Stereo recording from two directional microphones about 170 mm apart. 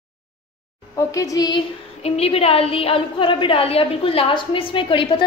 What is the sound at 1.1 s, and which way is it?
Speech, 20° left (ahead or behind).